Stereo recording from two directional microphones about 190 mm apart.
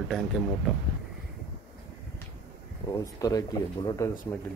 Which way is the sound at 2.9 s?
20° left (ahead or behind).